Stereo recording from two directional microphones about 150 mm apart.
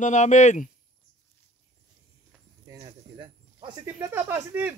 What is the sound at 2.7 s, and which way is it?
Cricket, 30° right (ahead or behind).